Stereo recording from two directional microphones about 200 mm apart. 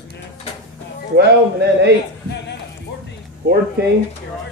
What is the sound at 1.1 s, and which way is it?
Speech, 55° right (ahead or behind).